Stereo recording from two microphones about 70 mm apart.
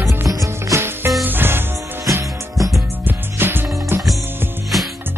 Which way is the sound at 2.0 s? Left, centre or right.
Right.